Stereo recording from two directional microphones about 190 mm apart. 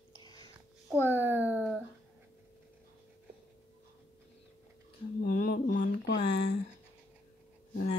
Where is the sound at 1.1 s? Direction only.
10° right (ahead or behind).